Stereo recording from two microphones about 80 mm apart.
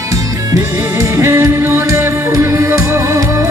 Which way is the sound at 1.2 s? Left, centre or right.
Right.